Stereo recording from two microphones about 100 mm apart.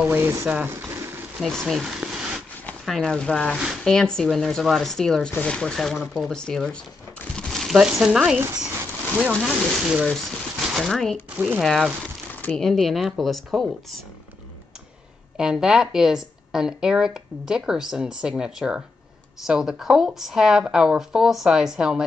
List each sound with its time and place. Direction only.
0.0 s speech: 20° right (ahead or behind)
0.5 s a sound: 20° right (ahead or behind)
1.4 s speech: centre (ahead or behind)
2.0 s zipper: 5° right (ahead or behind)
2.8 s speech: 5° left (ahead or behind)
11.2 s speech: 15° right (ahead or behind)
11.6 s speech: centre (ahead or behind)
15.3 s speech: 5° right (ahead or behind)